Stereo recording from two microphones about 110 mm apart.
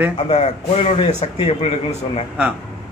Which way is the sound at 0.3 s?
80° left.